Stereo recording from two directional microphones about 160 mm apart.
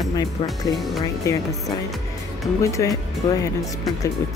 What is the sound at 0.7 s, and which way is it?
Speech, centre (ahead or behind).